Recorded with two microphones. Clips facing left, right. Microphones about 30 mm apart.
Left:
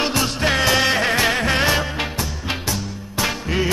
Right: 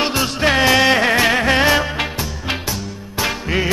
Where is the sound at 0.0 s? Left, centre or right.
Centre.